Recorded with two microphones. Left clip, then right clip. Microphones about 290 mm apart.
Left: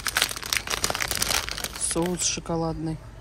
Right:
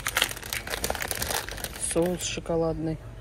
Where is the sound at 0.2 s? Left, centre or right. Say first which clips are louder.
Left 4 dB; left.